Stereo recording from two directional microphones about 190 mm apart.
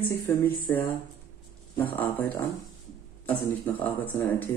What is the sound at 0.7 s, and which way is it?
Speech, 15° left (ahead or behind).